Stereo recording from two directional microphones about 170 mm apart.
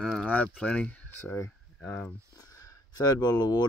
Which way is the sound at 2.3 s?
20° left (ahead or behind).